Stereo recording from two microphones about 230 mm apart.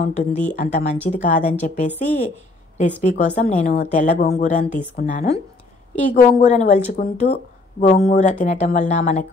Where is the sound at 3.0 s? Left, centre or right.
Left.